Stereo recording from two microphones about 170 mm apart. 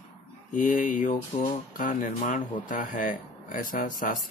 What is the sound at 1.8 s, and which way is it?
Speech, 50° left (ahead or behind).